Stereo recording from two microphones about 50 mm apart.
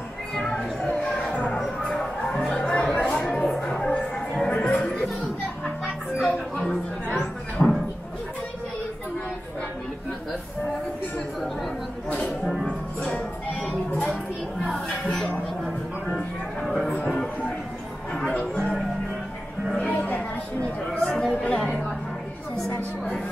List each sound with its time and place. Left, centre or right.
0.3 s a sound: centre
2.3 s chatter: left
3.5 s a sound: centre
4.5 s music: left
6.5 s chatter: centre
7.6 s a sound: left
12.6 s music: left
16.6 s music: centre
18.3 s music: left
19.9 s music: left
21.0 s chatter: centre